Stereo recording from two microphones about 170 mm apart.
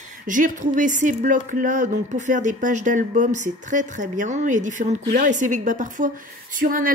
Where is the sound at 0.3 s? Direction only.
50° right (ahead or behind).